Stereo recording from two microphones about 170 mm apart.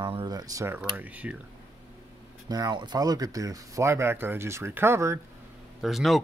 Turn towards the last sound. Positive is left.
turn(degrees=0)  # may be behind; listen again after turning